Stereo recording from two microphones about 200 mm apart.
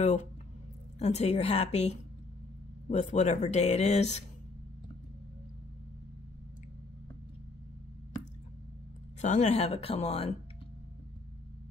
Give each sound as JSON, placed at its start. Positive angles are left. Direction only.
{"t": 0.0, "sound": "speech", "side_deg": 35}
{"t": 9.2, "sound": "speech", "side_deg": 35}